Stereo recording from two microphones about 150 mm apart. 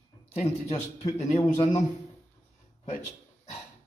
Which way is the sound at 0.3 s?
50° left (ahead or behind).